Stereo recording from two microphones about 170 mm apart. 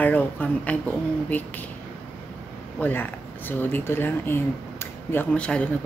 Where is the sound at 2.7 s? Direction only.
10° left (ahead or behind).